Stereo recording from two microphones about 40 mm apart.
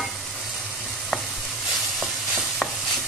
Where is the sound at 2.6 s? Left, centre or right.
Left.